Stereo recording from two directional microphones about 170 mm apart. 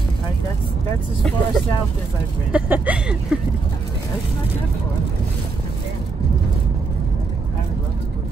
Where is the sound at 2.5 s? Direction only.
10° right (ahead or behind).